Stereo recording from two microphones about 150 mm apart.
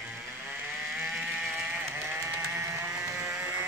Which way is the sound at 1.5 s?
15° right (ahead or behind).